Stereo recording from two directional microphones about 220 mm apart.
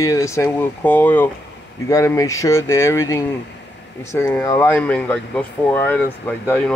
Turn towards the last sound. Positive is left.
turn(degrees=5)  # may be behind; listen again after turning